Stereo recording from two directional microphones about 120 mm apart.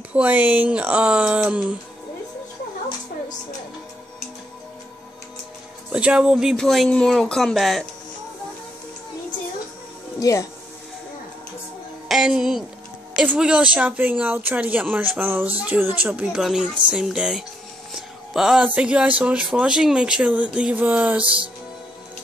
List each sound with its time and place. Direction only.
0.1 s speech: 10° right (ahead or behind)
5.9 s speech: 10° right (ahead or behind)
10.2 s speech: 30° left (ahead or behind)
12.1 s speech: 5° right (ahead or behind)